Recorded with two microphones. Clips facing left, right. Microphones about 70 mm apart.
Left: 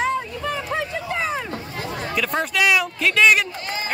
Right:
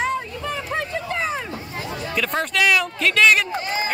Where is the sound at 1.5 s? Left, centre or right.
Left.